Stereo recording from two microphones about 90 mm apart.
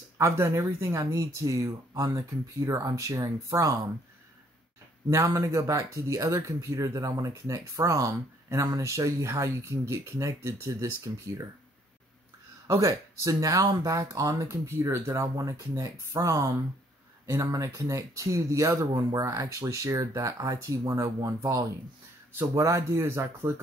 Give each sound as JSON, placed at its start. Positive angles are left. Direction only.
{"t": 0.2, "sound": "speech", "side_deg": -30}
{"t": 5.1, "sound": "speech", "side_deg": -35}
{"t": 12.6, "sound": "speech", "side_deg": -35}
{"t": 15.2, "sound": "speech", "side_deg": -40}